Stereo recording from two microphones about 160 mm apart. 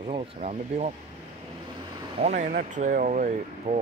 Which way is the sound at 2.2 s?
50° right (ahead or behind).